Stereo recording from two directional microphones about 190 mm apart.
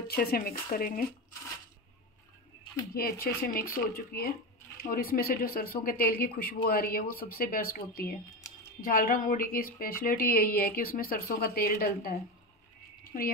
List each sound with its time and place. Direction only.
0.1 s a woman's voice: 50° left (ahead or behind)
2.9 s a woman's voice: 50° left (ahead or behind)